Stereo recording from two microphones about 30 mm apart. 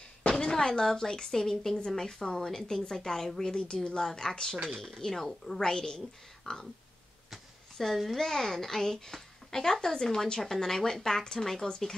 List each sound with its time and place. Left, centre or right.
0.4 s a woman's voice: left
3.6 s speech: left
4.0 s a woman's voice: centre
7.7 s a woman's voice: centre
8.2 s a woman's voice: centre
10.4 s a woman's voice: centre